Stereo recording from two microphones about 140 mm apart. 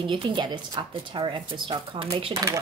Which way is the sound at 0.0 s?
35° right (ahead or behind).